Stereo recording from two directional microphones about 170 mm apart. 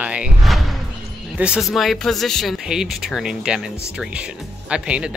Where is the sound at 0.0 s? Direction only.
5° right (ahead or behind).